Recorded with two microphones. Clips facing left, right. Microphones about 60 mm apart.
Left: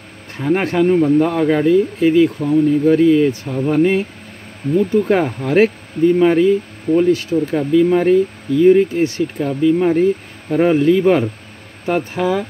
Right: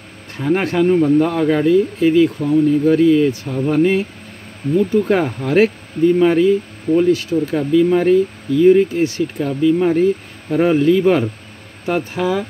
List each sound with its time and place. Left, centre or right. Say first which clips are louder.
0.4 s speech: even; centre
7.1 s speech: even; left
7.5 s speech: even; centre
11.8 s speech: left 1 dB; left
12.2 s speech: left 1 dB; left